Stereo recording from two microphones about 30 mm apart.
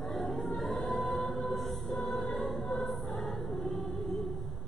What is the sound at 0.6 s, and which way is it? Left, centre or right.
Music, centre.